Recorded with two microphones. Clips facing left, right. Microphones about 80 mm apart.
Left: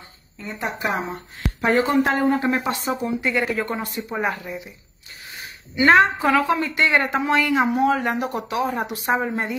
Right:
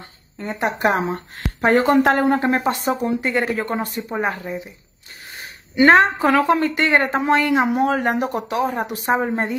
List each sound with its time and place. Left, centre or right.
0.4 s speech: right
1.6 s a woman's voice: right
5.9 s a woman's voice: right